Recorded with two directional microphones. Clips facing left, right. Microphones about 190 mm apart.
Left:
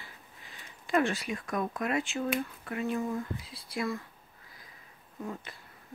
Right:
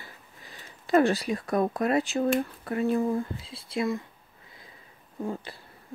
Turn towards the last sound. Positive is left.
turn(degrees=-30)  # may be behind; listen again after turning